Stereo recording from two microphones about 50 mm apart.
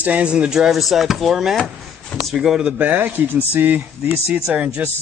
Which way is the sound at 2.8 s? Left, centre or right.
Right.